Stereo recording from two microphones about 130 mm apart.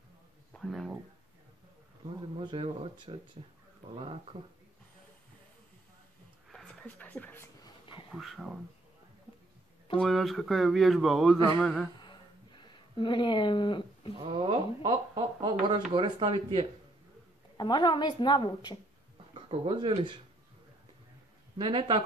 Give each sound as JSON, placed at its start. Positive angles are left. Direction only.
{"t": 0.5, "sound": "speech", "side_deg": 0}
{"t": 2.4, "sound": "speech", "side_deg": -40}
{"t": 6.7, "sound": "speech", "side_deg": 10}
{"t": 7.6, "sound": "a sound", "side_deg": 40}
{"t": 8.1, "sound": "speech", "side_deg": 0}
{"t": 9.9, "sound": "speech", "side_deg": 0}
{"t": 12.0, "sound": "a sound", "side_deg": 35}
{"t": 14.2, "sound": "speech", "side_deg": -40}
{"t": 17.6, "sound": "a woman's voice", "side_deg": 35}
{"t": 19.5, "sound": "speech", "side_deg": -45}
{"t": 21.5, "sound": "speech", "side_deg": -40}